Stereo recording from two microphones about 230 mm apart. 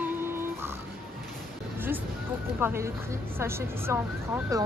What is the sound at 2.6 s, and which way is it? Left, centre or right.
Speech, centre.